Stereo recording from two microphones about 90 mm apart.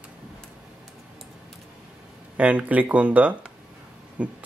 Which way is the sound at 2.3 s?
15° right (ahead or behind).